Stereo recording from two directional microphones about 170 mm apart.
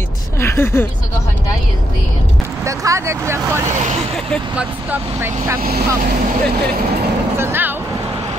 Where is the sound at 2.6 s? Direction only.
20° right (ahead or behind).